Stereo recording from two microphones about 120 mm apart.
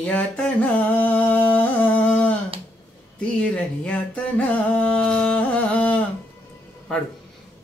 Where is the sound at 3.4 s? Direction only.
10° left (ahead or behind).